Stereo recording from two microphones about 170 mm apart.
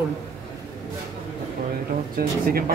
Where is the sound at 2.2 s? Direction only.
60° right (ahead or behind).